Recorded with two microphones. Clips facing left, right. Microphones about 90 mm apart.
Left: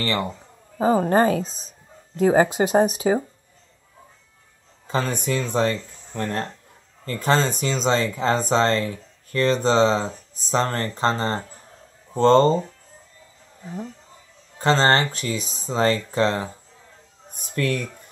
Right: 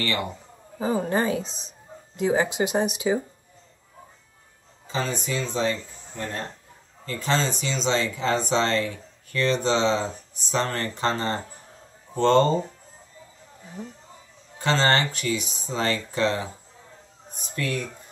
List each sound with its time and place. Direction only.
0.7 s speech: 40° left (ahead or behind)
4.8 s speech: 55° left (ahead or behind)
7.1 s speech: 45° left (ahead or behind)
14.6 s speech: 35° left (ahead or behind)
17.3 s speech: 55° left (ahead or behind)